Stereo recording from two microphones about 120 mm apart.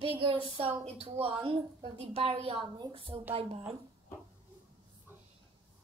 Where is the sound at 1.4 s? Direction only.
50° right (ahead or behind).